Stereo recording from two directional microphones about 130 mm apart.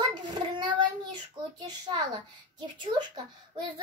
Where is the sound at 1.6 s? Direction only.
35° right (ahead or behind).